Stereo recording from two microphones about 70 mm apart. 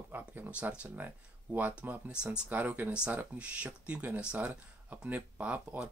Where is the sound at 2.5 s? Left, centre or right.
Right.